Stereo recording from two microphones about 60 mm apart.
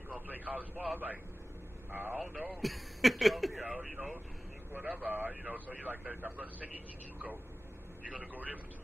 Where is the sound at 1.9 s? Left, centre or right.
Right.